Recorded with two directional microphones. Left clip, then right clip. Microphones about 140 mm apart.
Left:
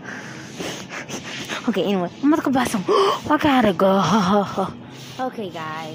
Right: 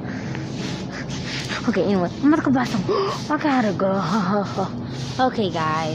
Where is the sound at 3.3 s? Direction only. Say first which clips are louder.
Left 2 dB; 50° left (ahead or behind).